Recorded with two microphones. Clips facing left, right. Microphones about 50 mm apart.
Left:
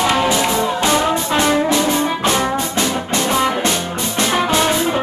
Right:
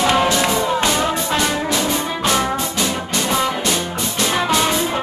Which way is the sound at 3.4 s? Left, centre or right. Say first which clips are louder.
Left 2 dB; left.